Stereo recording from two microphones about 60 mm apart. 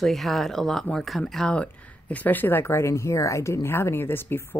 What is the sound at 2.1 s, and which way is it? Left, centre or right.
Speech, left.